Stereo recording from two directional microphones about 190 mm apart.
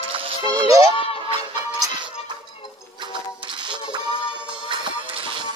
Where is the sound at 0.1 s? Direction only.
20° right (ahead or behind).